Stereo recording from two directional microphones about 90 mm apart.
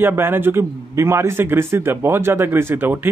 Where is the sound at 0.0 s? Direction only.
25° right (ahead or behind).